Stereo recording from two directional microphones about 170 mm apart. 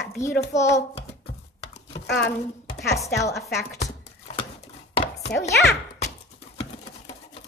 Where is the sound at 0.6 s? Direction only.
15° left (ahead or behind).